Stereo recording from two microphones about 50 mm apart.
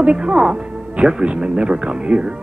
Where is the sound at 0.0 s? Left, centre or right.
Centre.